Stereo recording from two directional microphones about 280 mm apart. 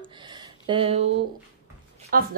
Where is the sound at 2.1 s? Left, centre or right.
Right.